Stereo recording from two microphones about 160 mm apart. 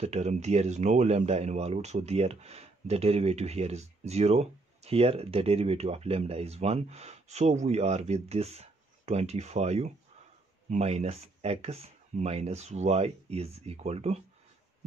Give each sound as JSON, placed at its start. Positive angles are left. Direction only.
{"t": 0.0, "sound": "speech", "side_deg": -45}